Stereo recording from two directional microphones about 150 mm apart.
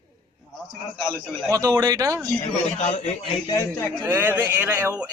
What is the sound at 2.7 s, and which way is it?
Speech, 50° left (ahead or behind).